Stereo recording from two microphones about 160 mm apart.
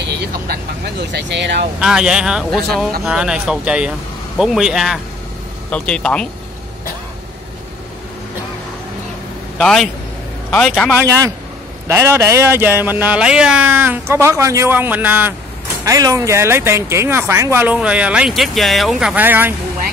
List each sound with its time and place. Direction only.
1.1 s speech: 90° right
1.8 s a man's voice: 5° right (ahead or behind)
9.6 s a man's voice: 5° left (ahead or behind)
11.1 s a man's voice: 20° right (ahead or behind)